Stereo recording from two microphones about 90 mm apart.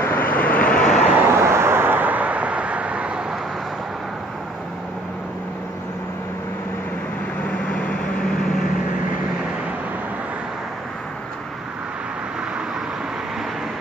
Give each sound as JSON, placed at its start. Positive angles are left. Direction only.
{"t": 0.0, "sound": "vehicle", "side_deg": 20}
{"t": 1.1, "sound": "vehicle", "side_deg": -30}
{"t": 7.4, "sound": "vehicle", "side_deg": 10}